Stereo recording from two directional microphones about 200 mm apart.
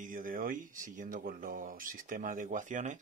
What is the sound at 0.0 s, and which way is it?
Speech, 40° right (ahead or behind).